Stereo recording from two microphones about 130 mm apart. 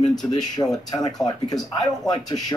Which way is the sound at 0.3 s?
30° left (ahead or behind).